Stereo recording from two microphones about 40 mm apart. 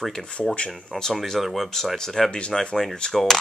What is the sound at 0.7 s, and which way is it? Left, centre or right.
Speech, centre.